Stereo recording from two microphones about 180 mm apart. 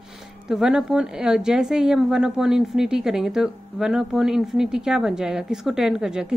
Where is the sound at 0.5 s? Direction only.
5° right (ahead or behind).